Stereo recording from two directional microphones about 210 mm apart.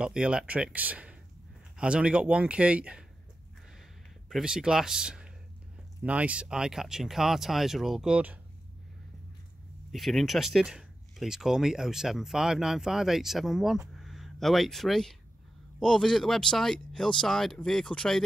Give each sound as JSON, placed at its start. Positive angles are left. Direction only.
{"t": 0.0, "sound": "speech", "side_deg": -5}
{"t": 4.3, "sound": "speech", "side_deg": -5}
{"t": 9.8, "sound": "speech", "side_deg": 0}